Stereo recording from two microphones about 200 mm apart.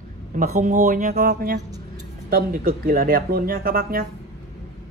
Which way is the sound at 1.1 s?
50° right (ahead or behind).